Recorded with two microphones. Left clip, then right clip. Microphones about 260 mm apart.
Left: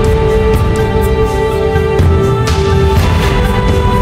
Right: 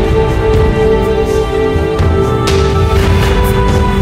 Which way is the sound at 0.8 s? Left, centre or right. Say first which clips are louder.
Right 2 dB; centre.